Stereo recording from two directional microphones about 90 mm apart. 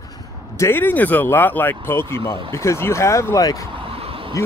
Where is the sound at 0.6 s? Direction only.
25° left (ahead or behind).